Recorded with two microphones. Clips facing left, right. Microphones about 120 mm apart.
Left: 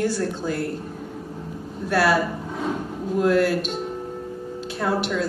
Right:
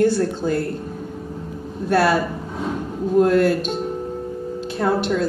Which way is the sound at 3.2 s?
25° right (ahead or behind).